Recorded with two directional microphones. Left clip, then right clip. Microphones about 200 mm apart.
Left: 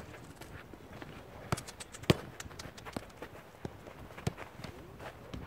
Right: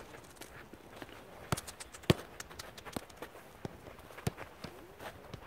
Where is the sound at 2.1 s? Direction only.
15° left (ahead or behind).